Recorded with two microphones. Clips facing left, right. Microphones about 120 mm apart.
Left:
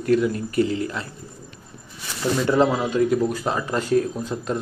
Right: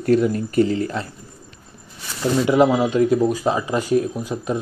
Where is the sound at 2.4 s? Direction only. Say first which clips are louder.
Right 4 dB; 15° right (ahead or behind).